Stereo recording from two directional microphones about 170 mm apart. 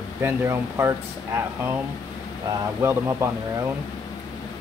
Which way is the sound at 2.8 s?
15° right (ahead or behind).